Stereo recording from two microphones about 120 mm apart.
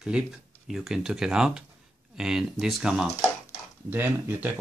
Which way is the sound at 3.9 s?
15° right (ahead or behind).